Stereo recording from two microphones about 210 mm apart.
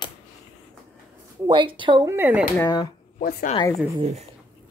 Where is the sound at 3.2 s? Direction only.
40° left (ahead or behind).